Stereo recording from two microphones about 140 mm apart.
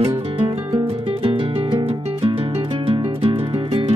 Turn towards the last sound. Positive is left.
turn(degrees=-40)  # may be behind; listen again after turning